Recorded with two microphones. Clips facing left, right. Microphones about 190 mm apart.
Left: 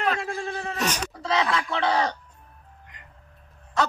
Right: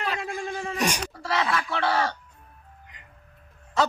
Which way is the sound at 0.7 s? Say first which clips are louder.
Right 2 dB; 10° right (ahead or behind).